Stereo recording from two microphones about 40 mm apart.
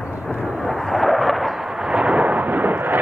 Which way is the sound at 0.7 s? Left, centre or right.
Centre.